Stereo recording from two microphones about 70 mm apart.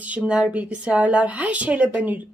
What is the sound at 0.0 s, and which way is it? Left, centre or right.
Speech, right.